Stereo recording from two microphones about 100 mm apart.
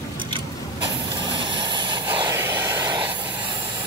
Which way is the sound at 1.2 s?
50° right (ahead or behind).